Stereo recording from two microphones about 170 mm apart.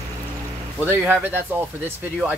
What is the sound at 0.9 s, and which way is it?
Speech, 10° right (ahead or behind).